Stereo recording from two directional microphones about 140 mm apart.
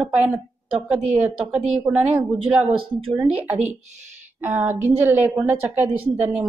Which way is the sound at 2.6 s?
40° right (ahead or behind).